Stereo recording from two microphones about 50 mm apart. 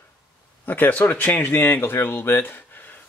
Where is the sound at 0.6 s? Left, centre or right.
Left.